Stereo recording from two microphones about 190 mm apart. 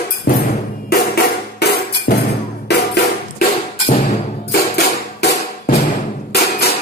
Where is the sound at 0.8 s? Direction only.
55° left (ahead or behind).